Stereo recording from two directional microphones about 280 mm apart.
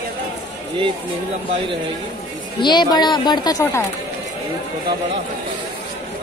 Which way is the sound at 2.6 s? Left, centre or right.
Centre.